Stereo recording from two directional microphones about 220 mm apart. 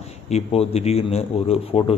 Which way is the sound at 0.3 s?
25° left (ahead or behind).